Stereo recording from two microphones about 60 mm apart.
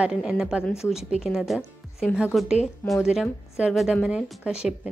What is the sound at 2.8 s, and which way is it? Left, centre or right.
Speech, left.